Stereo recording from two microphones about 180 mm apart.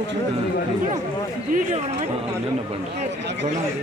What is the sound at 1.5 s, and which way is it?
Speech, 50° right (ahead or behind).